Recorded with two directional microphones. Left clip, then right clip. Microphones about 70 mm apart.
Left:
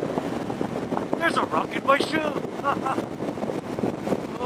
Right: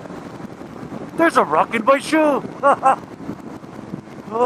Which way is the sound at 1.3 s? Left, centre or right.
Right.